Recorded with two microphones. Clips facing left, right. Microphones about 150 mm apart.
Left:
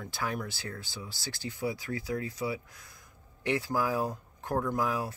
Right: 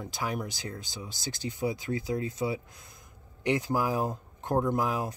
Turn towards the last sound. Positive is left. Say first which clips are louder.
# right 2 dB
turn(degrees=-20)  # may be behind; listen again after turning